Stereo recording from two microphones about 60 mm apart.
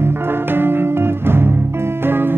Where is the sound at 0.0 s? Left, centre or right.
Right.